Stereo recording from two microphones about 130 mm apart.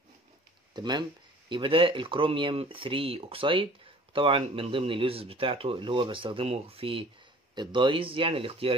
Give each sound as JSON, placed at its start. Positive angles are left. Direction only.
{"t": 0.7, "sound": "speech", "side_deg": -35}